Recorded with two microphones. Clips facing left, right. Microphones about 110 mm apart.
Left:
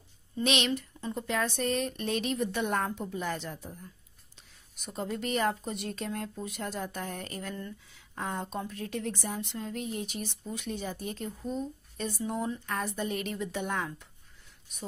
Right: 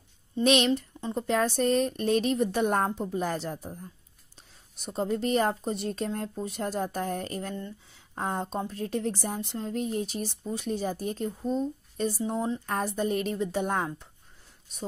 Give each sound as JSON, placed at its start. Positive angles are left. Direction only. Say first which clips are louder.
{"t": 0.4, "sound": "a woman's voice", "louder": "right 6 dB", "side_deg": -40}